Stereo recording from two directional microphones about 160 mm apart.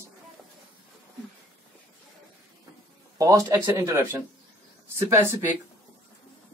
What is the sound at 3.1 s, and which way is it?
Speech, 20° right (ahead or behind).